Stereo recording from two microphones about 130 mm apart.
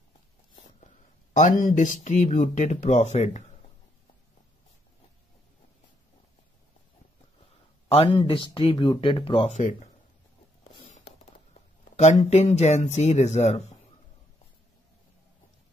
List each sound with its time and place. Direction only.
1.3 s speech: 75° left (ahead or behind)
7.9 s speech: 40° left (ahead or behind); by 9.8 s 60° left (ahead or behind)
10.9 s a sound: 65° left (ahead or behind)
12.3 s speech: 60° left (ahead or behind)